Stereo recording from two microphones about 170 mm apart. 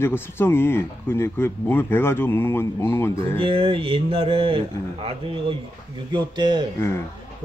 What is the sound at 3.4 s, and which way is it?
Speech, 30° right (ahead or behind).